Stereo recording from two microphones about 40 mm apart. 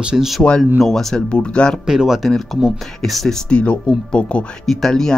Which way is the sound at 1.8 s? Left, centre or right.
Centre.